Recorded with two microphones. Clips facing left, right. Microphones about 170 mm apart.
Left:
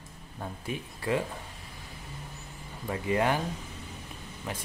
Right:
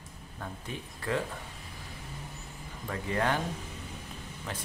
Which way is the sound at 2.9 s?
15° left (ahead or behind).